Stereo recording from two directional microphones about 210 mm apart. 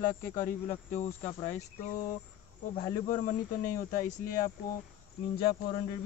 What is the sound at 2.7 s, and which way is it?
Speech, 40° left (ahead or behind).